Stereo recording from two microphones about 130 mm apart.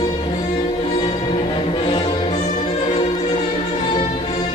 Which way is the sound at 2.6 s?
45° left (ahead or behind).